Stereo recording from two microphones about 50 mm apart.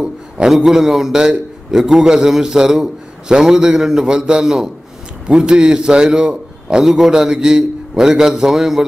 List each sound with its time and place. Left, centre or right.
0.7 s a man's voice: centre